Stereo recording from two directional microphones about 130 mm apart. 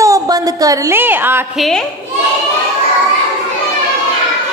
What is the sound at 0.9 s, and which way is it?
Speech, 15° right (ahead or behind).